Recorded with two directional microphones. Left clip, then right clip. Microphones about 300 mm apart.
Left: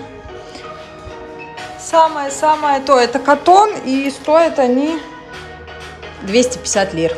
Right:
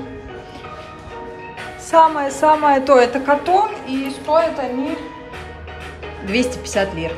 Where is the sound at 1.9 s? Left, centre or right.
Centre; by 4.6 s left.